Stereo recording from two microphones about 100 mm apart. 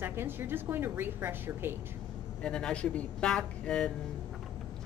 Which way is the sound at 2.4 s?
10° left (ahead or behind).